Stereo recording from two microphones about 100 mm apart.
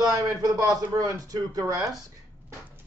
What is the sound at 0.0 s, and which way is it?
Speech, 35° right (ahead or behind).